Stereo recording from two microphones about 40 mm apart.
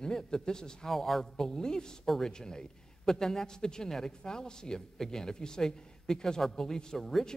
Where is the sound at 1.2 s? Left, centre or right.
Centre.